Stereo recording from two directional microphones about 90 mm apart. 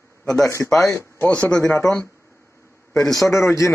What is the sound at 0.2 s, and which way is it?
A man's voice, 5° left (ahead or behind).